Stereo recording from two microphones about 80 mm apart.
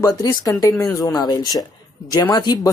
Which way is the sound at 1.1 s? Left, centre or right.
Left.